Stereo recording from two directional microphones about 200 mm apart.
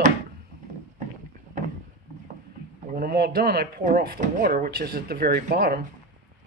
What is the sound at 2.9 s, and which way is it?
Speech, 50° right (ahead or behind).